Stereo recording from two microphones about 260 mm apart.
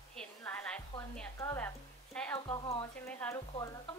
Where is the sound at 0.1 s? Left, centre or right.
Centre.